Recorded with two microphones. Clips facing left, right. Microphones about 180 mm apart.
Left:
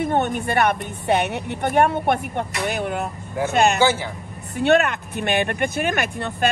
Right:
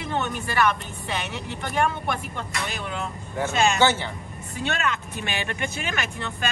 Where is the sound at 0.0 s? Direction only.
55° left (ahead or behind).